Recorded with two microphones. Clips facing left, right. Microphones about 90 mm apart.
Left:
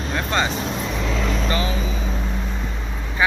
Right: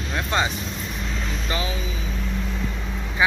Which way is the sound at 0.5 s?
75° left (ahead or behind).